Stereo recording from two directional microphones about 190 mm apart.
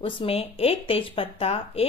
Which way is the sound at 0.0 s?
25° left (ahead or behind).